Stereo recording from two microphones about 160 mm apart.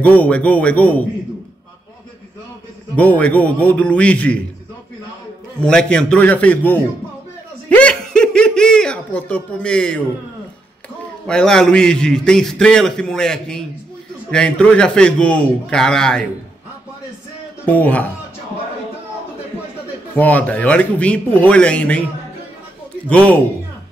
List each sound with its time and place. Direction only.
0.0 s speech: 10° left (ahead or behind)
3.0 s speech: 10° left (ahead or behind)
5.6 s speech: 5° left (ahead or behind)
11.2 s a man's voice: 5° left (ahead or behind)
17.6 s speech: 10° left (ahead or behind)
20.2 s speech: 10° left (ahead or behind)
23.0 s speech: 5° left (ahead or behind)